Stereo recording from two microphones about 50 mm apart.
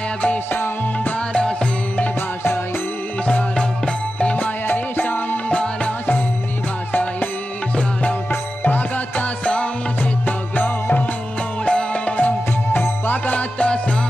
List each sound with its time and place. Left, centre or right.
0.5 s music: left
1.1 s music: centre
3.5 s music: left
4.6 s music: left
5.5 s music: left
6.9 s music: left
7.7 s music: left
11.6 s music: left
12.7 s music: left
13.2 s music: left